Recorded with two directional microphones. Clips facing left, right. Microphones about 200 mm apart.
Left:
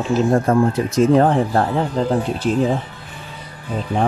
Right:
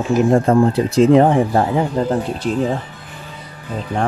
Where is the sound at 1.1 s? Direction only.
15° right (ahead or behind).